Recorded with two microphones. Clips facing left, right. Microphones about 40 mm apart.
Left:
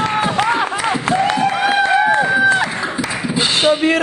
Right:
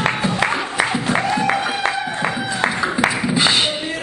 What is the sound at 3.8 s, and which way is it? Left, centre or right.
Music, left.